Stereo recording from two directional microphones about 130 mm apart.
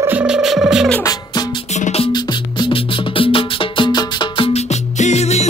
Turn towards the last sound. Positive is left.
turn(degrees=55)  # may be behind; listen again after turning